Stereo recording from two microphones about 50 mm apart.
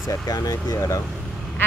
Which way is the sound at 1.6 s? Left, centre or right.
Left.